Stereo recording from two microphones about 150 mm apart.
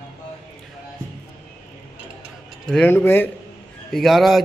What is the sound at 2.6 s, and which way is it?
Speech, 5° left (ahead or behind).